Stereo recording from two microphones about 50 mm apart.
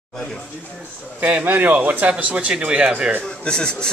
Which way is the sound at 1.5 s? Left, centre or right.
Right.